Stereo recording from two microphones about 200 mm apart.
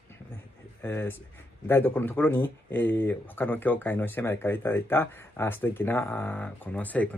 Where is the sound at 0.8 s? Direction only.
10° left (ahead or behind).